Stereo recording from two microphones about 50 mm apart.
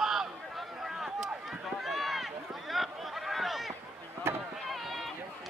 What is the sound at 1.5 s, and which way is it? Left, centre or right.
Run, centre.